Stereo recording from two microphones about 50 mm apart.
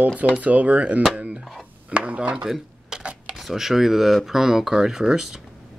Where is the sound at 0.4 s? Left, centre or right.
Right.